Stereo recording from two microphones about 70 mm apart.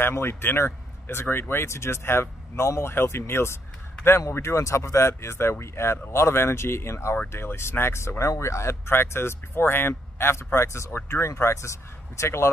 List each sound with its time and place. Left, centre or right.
0.0 s speech: left